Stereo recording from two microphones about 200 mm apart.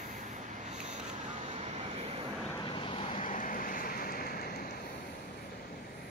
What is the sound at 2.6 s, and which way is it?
Vehicle, 25° left (ahead or behind).